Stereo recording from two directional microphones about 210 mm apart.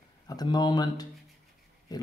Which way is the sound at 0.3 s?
20° left (ahead or behind).